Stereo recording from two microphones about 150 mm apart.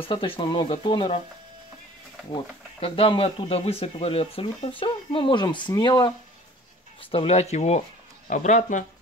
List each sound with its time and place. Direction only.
0.0 s speech: 35° left (ahead or behind)
2.3 s speech: 35° left (ahead or behind); by 8.8 s 55° left (ahead or behind)